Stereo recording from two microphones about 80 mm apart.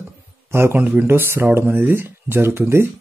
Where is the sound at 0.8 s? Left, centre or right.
Right.